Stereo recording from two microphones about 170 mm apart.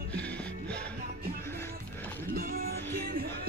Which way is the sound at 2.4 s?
55° right (ahead or behind).